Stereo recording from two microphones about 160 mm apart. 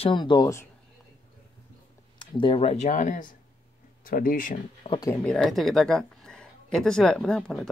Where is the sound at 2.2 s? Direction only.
30° left (ahead or behind); by 3.2 s 45° left (ahead or behind).